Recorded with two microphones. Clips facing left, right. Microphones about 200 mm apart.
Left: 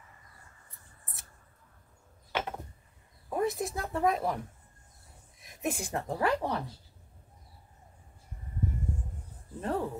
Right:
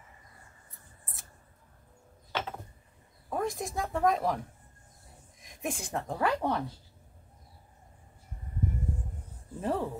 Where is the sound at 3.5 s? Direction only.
Centre (ahead or behind).